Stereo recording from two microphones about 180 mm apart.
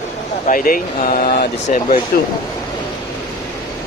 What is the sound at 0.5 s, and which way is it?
Speech, 50° left (ahead or behind).